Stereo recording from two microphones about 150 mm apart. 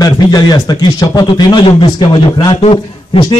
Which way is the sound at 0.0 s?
25° left (ahead or behind).